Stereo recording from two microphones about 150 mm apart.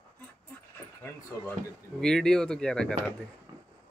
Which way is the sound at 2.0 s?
5° left (ahead or behind).